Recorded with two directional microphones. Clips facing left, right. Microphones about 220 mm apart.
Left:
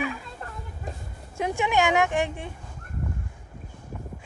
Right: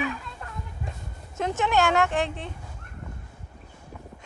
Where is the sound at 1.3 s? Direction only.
10° left (ahead or behind).